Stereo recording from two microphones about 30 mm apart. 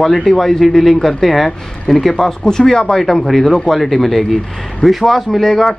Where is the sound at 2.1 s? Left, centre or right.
Centre.